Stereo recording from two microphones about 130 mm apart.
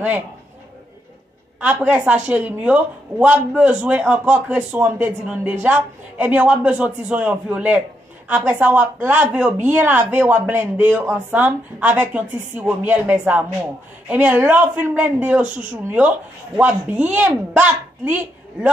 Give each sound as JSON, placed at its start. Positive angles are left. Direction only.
{"t": 1.6, "sound": "a woman's voice", "side_deg": -10}